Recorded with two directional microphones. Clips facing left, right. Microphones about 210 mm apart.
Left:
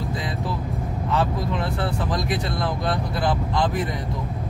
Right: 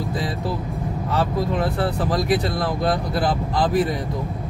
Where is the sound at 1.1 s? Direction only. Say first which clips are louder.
Right 2 dB; 40° right (ahead or behind).